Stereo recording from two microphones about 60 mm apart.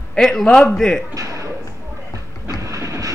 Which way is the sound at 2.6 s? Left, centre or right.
Right.